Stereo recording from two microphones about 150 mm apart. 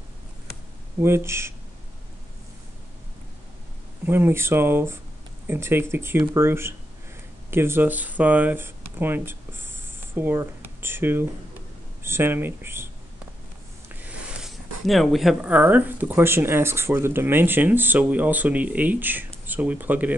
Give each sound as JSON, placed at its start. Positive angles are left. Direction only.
{"t": 1.0, "sound": "speech", "side_deg": -15}
{"t": 4.0, "sound": "speech", "side_deg": -15}
{"t": 13.8, "sound": "a sound", "side_deg": -10}
{"t": 14.9, "sound": "speech", "side_deg": 0}